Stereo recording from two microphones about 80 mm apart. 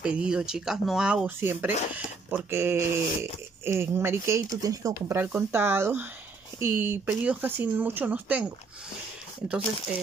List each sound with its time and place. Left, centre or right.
0.0 s speech: centre
1.4 s speech: right
5.1 s speech: right